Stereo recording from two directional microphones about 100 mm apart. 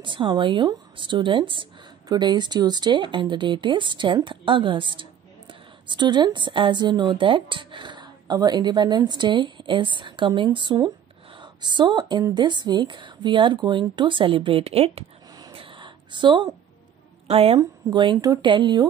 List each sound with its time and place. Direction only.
0.0 s speech: 55° right (ahead or behind); by 15.0 s 80° right
15.5 s a sound: 60° right (ahead or behind)
17.3 s a woman's voice: 75° right (ahead or behind)
17.6 s speech: 40° right (ahead or behind)